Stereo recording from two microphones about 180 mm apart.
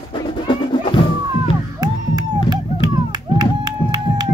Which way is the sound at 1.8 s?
20° right (ahead or behind).